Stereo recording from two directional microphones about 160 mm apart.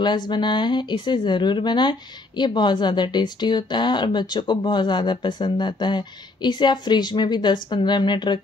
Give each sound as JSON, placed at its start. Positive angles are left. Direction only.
{"t": 0.0, "sound": "speech", "side_deg": 30}